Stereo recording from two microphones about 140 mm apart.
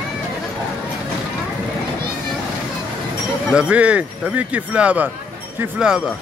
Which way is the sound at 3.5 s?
10° right (ahead or behind).